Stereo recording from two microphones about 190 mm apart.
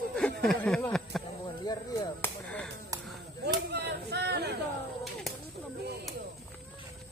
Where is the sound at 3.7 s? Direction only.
60° right (ahead or behind).